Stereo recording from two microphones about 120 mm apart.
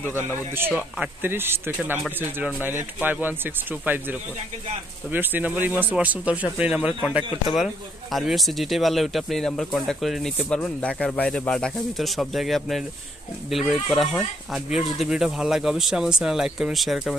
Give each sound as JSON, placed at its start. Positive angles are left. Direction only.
{"t": 0.7, "sound": "speech", "side_deg": -10}